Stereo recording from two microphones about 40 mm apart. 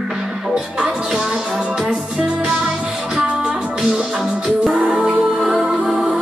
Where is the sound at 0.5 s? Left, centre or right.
Right.